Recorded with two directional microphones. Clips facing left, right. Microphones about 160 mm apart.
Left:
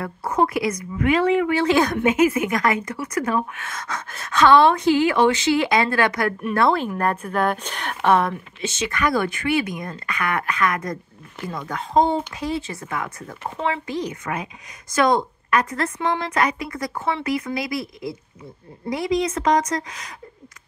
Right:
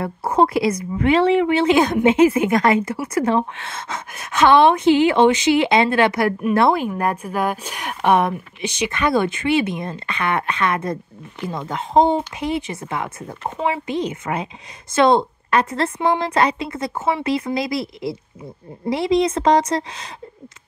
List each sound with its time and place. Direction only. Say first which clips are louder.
0.0 s a woman's voice: right 4 dB; 30° right (ahead or behind)
6.7 s a woman's voice: right 2 dB; 10° right (ahead or behind); by 17.8 s 35° right (ahead or behind)
18.9 s a woman's voice: right 4 dB; 30° right (ahead or behind)